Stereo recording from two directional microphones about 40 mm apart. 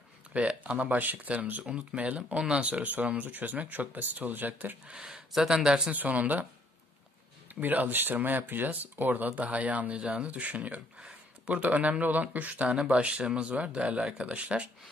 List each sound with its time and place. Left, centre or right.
0.3 s speech: right
1.6 s speech: right
4.8 s speech: right
5.3 s speech: centre
5.9 s speech: right
7.6 s speech: right